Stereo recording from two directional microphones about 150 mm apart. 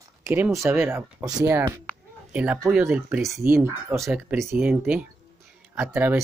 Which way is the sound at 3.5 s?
15° right (ahead or behind).